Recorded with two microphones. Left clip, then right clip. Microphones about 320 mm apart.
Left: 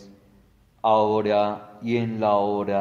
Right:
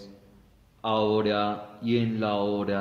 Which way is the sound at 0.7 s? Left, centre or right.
Centre.